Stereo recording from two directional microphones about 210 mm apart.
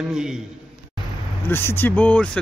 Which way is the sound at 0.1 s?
5° right (ahead or behind).